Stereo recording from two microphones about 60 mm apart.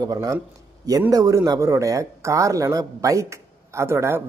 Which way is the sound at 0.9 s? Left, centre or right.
Right.